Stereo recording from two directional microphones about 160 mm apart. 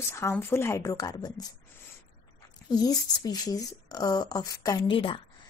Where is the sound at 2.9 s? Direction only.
25° left (ahead or behind).